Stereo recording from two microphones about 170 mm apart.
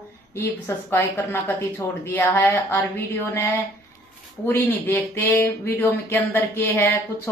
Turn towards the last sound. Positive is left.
turn(degrees=15)  # may be behind; listen again after turning